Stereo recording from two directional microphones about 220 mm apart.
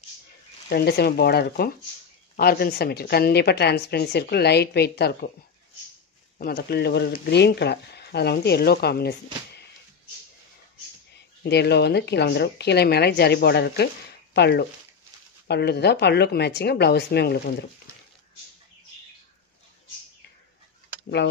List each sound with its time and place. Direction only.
0.7 s a woman's voice: 45° left (ahead or behind)
6.3 s a woman's voice: 45° left (ahead or behind)
11.4 s a woman's voice: 50° left (ahead or behind)